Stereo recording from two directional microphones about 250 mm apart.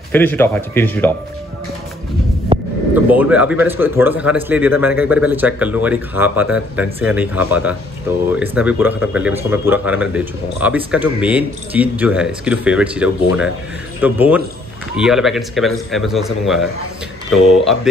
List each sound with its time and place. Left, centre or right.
0.1 s speech: centre
2.5 s heart sounds: right
3.1 s a man's voice: centre